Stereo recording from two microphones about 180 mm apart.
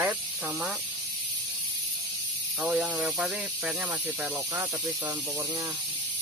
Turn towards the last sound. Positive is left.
turn(degrees=-20)  # may be behind; listen again after turning